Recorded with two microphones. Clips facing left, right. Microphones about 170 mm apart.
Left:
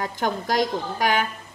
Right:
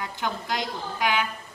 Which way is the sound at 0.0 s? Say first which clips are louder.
Left 5 dB; 45° left (ahead or behind).